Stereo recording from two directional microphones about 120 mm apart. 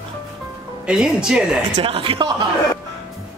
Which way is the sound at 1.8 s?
50° right (ahead or behind).